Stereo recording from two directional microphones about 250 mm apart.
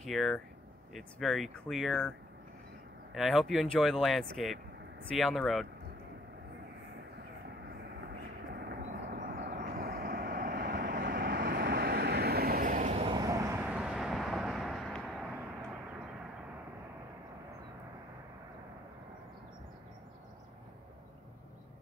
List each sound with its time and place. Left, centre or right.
0.0 s speech: centre
3.2 s speech: centre
8.5 s vehicle: right; by 15.3 s centre